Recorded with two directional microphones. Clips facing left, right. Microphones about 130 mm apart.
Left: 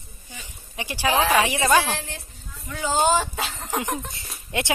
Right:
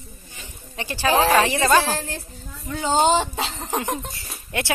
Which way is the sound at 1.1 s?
35° right (ahead or behind).